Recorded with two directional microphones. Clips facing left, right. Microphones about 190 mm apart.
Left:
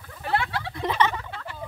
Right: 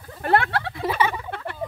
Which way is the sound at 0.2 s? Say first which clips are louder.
Right 6 dB; 55° right (ahead or behind).